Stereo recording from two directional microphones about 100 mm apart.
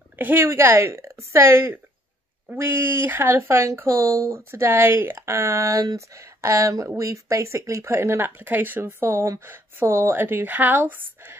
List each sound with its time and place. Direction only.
0.2 s speech: 20° right (ahead or behind)